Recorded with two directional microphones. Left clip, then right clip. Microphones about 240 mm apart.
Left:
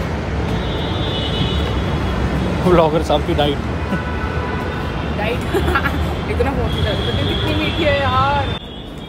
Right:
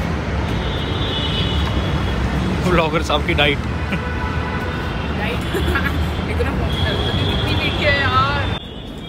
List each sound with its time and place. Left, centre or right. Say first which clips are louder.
2.7 s speech: left 4 dB; centre